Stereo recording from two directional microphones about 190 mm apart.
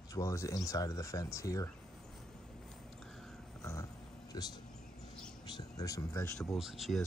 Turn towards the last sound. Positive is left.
turn(degrees=0)  # may be behind; listen again after turning